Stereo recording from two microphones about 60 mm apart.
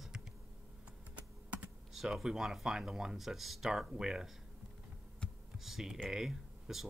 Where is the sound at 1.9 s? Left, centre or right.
Centre.